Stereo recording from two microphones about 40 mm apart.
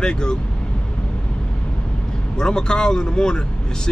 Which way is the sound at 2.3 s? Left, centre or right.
Left.